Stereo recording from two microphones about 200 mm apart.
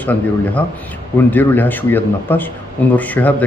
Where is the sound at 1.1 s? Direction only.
10° left (ahead or behind).